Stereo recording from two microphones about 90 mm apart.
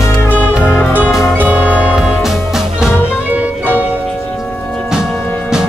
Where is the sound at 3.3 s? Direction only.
20° right (ahead or behind).